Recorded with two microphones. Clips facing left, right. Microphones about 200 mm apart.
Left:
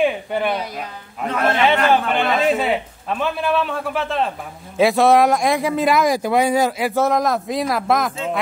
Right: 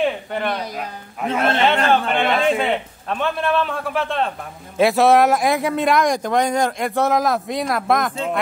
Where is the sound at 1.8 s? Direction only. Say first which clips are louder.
Even; 5° left (ahead or behind).